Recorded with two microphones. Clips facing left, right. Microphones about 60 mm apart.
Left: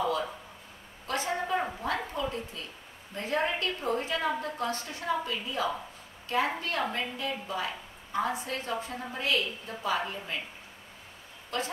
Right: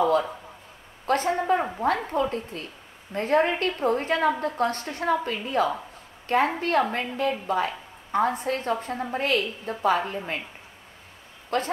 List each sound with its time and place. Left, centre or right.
0.0 s a sound: right
1.0 s a woman's voice: right
11.5 s a woman's voice: right